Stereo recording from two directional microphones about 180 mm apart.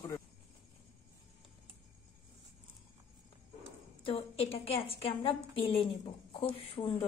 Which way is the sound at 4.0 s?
30° left (ahead or behind).